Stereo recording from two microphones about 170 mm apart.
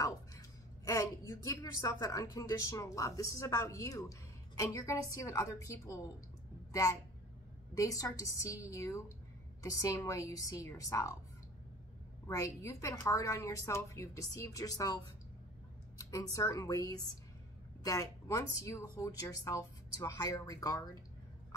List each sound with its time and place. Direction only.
0.0 s a woman's voice: 20° left (ahead or behind)
12.3 s a woman's voice: 20° left (ahead or behind)
16.0 s a woman's voice: 20° left (ahead or behind)